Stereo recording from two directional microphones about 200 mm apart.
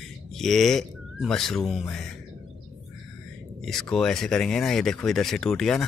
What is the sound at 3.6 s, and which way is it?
Speech, centre (ahead or behind).